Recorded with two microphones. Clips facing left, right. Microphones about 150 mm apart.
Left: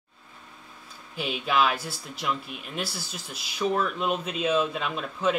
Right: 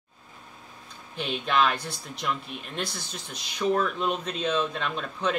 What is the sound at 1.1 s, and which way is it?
Speech, 5° left (ahead or behind).